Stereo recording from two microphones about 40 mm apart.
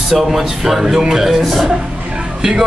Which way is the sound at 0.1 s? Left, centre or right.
Centre.